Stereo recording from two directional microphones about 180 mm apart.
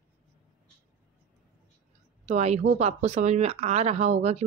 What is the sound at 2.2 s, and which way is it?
A woman's voice, 40° right (ahead or behind).